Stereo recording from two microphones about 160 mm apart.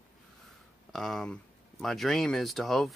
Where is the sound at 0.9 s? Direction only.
Centre (ahead or behind).